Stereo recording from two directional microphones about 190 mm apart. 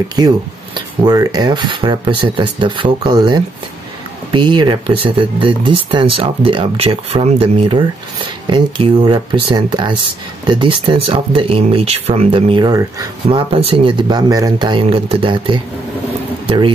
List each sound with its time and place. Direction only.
0.2 s speech: 20° right (ahead or behind)